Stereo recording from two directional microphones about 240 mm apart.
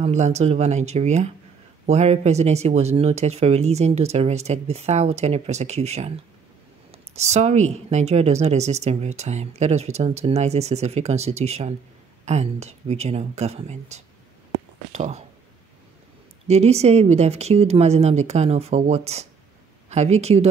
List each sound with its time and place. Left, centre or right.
0.0 s speech: right
16.4 s speech: right